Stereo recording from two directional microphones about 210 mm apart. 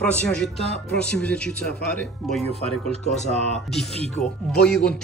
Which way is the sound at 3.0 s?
35° left (ahead or behind).